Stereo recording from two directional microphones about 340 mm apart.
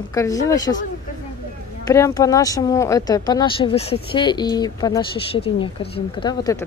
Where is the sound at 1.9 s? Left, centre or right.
Centre.